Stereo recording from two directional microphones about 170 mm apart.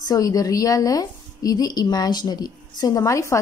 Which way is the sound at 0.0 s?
20° left (ahead or behind).